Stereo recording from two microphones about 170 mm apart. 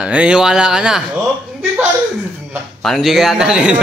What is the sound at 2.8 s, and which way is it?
Speech, centre (ahead or behind).